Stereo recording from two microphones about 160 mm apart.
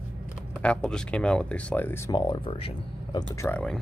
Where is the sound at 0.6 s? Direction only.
5° left (ahead or behind); by 3.3 s 30° left (ahead or behind).